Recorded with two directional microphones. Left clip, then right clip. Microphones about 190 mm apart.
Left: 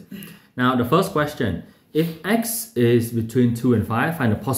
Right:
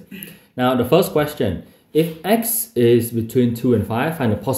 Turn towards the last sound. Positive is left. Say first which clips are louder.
# right 2 dB
turn(degrees=-10)  # may be behind; listen again after turning